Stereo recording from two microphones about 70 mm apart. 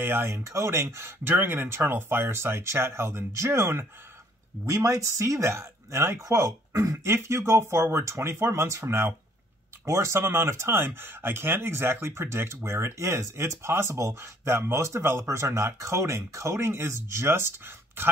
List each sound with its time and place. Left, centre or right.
0.0 s speech: right